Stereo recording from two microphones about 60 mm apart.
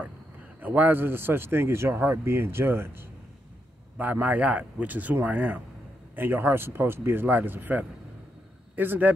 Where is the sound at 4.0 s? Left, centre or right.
Right.